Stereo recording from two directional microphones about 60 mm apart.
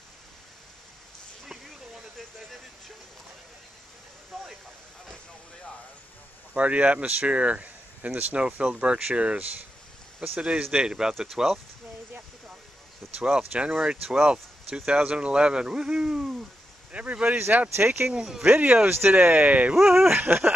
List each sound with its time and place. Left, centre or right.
4.3 s vehicle: centre
6.5 s speech: right
10.7 s speech: centre
11.1 s speech: centre
13.0 s a sound: centre
13.5 s speech: centre
16.9 s speech: right
17.7 s a sound: right
18.1 s speech: centre
18.5 s speech: right
18.9 s a sound: right
19.1 s speech: right
19.7 s speech: centre
20.1 s a sound: right